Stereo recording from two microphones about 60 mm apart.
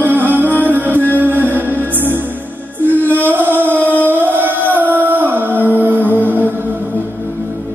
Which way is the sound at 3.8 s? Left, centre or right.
Left.